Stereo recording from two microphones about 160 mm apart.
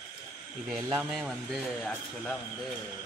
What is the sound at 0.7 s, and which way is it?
Speech, 20° right (ahead or behind).